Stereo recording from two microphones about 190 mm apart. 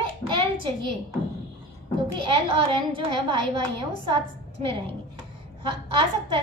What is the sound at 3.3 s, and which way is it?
A child's voice, 25° right (ahead or behind).